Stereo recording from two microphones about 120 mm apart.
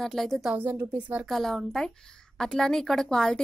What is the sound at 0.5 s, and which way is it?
Speech, 15° right (ahead or behind).